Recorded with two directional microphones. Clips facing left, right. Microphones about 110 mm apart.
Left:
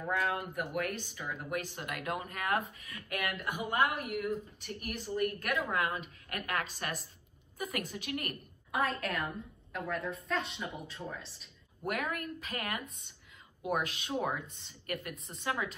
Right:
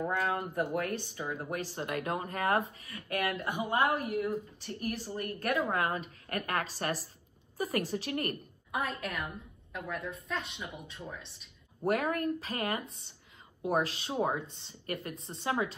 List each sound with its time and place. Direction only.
0.1 s a woman's voice: 35° right (ahead or behind)
3.4 s a woman's voice: 25° right (ahead or behind)
8.7 s a woman's voice: centre (ahead or behind)
11.8 s a woman's voice: 35° right (ahead or behind)